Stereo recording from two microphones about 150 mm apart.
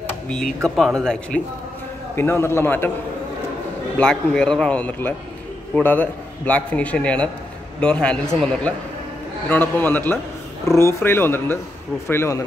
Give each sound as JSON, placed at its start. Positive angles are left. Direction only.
{"t": 0.3, "sound": "speech", "side_deg": 5}
{"t": 2.1, "sound": "a man's voice", "side_deg": 15}
{"t": 4.0, "sound": "a man's voice", "side_deg": 5}